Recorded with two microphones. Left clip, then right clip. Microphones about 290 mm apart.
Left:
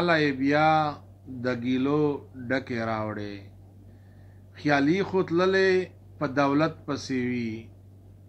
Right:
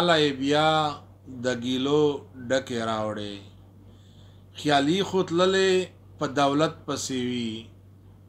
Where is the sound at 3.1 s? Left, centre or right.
Right.